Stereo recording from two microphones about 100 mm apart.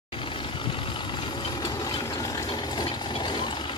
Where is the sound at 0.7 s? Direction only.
55° left (ahead or behind); by 1.9 s 40° left (ahead or behind).